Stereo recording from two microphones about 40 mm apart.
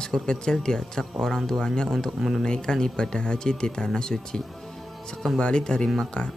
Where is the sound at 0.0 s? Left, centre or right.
Left.